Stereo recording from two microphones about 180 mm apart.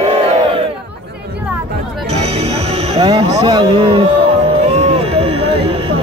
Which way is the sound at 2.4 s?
35° right (ahead or behind).